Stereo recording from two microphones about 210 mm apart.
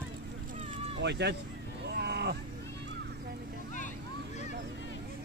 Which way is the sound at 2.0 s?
50° right (ahead or behind).